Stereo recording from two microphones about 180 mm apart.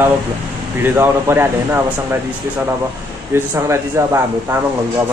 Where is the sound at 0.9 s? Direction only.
10° right (ahead or behind).